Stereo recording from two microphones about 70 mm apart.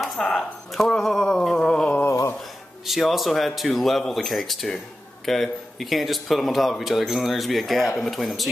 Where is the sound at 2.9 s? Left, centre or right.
Centre.